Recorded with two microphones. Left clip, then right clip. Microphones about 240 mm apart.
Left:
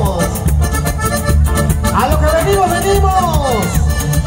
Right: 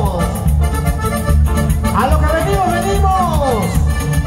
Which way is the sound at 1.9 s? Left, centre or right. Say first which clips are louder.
Left 2 dB; left.